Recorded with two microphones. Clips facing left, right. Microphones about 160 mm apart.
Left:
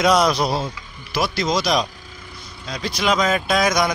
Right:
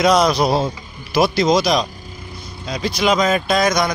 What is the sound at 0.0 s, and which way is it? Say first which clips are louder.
Speech: right 2 dB; centre (ahead or behind).